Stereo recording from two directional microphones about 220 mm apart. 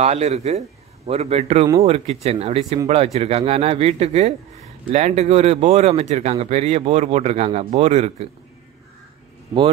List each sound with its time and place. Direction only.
0.0 s speech: 30° right (ahead or behind)